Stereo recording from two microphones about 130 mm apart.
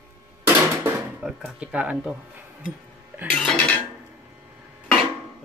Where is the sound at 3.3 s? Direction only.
5° left (ahead or behind).